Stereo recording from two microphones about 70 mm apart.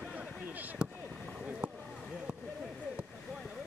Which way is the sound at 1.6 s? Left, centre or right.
Right.